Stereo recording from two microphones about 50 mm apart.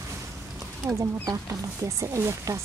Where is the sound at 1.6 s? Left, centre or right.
Right.